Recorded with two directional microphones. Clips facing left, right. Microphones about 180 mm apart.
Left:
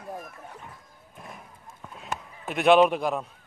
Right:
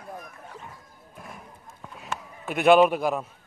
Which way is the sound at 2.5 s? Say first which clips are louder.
Right 1 dB; centre (ahead or behind).